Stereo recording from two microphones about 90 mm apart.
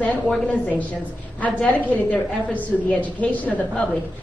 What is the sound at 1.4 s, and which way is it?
A woman's voice, 20° left (ahead or behind).